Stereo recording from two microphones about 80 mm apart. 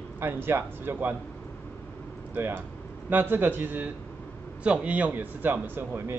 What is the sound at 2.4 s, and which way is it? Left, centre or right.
A man's voice, right.